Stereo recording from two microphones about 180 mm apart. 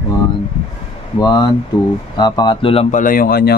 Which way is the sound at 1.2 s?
20° left (ahead or behind).